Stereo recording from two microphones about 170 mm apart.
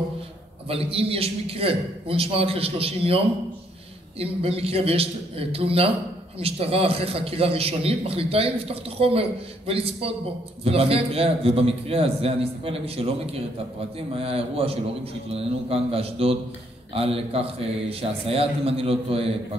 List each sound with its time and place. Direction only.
0.7 s a man's voice: 35° right (ahead or behind)
4.2 s a man's voice: 35° right (ahead or behind)